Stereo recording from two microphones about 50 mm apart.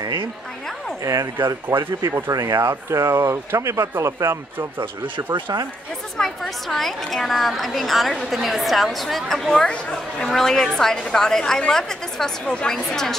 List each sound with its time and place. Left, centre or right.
1.0 s speech: right
6.1 s a woman's voice: centre
9.7 s a woman's voice: left